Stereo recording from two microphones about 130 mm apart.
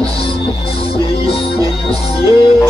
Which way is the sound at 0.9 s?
45° left (ahead or behind).